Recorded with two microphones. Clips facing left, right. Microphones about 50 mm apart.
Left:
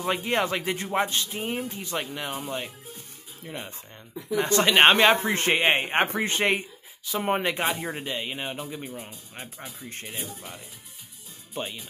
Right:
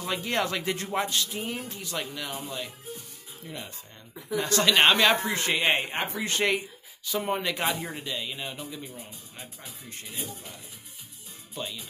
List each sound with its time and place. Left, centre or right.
0.0 s a man's voice: left
5.9 s speech: left
6.2 s a man's voice: left
7.6 s speech: centre
8.0 s speech: left
11.5 s speech: left